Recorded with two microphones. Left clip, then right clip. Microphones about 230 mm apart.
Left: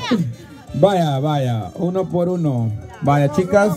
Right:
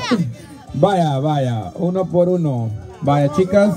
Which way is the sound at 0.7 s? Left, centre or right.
Left.